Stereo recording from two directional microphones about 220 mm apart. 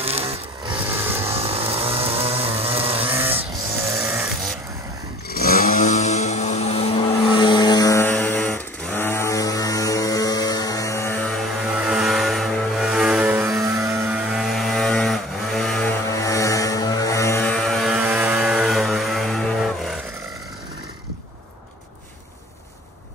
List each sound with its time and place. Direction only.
0.0 s vehicle: 25° right (ahead or behind)
4.0 s snoring: 10° right (ahead or behind)
5.3 s vehicle: 45° left (ahead or behind); by 11.4 s 5° left (ahead or behind)
11.6 s vehicle: 5° right (ahead or behind)